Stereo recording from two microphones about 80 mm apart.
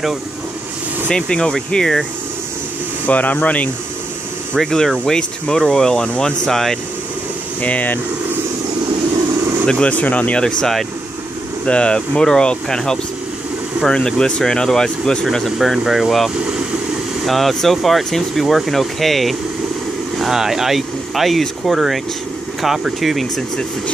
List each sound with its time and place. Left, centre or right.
1.0 s speech: centre
3.1 s speech: centre
4.6 s speech: centre
7.6 s speech: centre
9.7 s speech: centre